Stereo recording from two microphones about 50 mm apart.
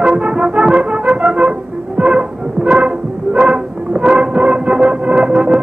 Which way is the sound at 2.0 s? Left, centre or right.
Centre.